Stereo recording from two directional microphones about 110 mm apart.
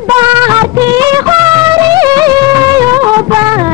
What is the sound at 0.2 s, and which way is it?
Music of bollywood, 40° right (ahead or behind).